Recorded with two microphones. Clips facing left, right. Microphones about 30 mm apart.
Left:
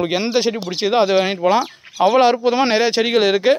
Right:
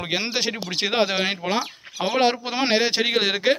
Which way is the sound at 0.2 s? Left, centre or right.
Right.